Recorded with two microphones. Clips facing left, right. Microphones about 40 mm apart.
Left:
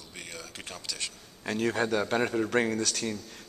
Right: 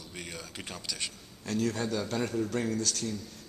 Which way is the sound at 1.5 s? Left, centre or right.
Left.